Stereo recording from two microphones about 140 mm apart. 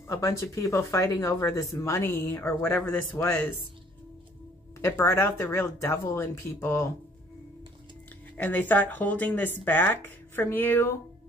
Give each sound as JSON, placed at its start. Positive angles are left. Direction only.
{"t": 0.0, "sound": "speech", "side_deg": 20}
{"t": 4.8, "sound": "speech", "side_deg": 20}
{"t": 8.4, "sound": "speech", "side_deg": 10}